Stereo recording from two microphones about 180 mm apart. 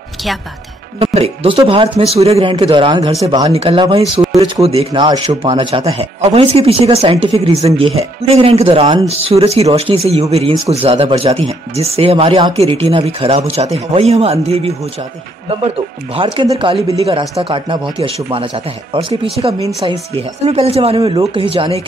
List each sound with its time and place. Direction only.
0.9 s a man's voice: 35° right (ahead or behind)
3.4 s speech: 35° right (ahead or behind)
16.2 s a man's voice: 25° right (ahead or behind)
19.8 s speech: 30° right (ahead or behind)